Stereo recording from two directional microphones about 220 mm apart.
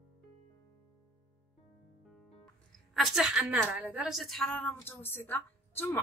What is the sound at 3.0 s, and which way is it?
A woman's voice, centre (ahead or behind).